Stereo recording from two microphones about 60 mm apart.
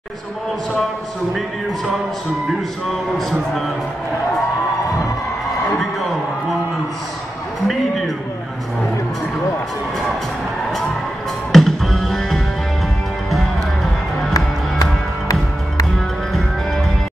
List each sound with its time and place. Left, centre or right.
3.2 s a man's voice: centre
7.6 s a man's voice: centre
11.5 s music: centre
14.3 s music: left